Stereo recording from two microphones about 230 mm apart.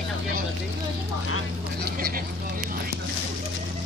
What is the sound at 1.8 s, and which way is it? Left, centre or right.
Speech, right.